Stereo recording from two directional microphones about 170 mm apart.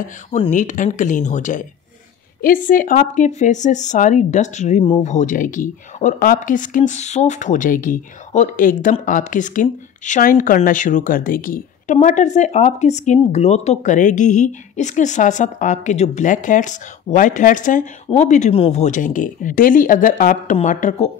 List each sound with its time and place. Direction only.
0.5 s speech: 50° left (ahead or behind)